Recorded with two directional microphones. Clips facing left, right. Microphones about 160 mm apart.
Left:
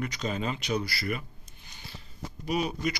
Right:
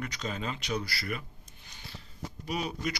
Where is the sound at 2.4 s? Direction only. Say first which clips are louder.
Left 5 dB; 10° left (ahead or behind).